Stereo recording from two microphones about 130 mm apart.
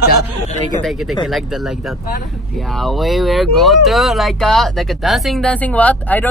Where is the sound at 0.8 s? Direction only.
Centre (ahead or behind).